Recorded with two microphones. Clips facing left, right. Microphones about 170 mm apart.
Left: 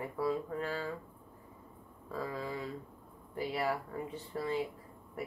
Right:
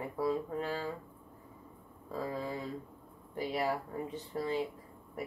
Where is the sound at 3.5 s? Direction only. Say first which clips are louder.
Right 1 dB; 15° right (ahead or behind).